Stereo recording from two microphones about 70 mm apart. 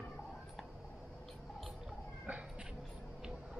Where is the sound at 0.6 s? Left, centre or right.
Centre.